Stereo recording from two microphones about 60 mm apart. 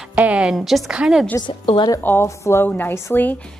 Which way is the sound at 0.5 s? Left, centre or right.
Centre.